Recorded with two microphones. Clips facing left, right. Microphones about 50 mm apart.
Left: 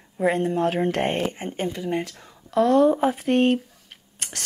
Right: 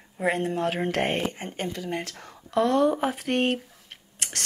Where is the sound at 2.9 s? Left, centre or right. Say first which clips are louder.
Left 5 dB; centre.